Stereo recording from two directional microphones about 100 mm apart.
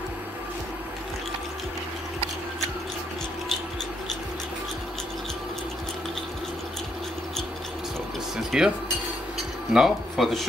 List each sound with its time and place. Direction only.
8.4 s dishes: 5° right (ahead or behind)
9.7 s speech: 5° right (ahead or behind)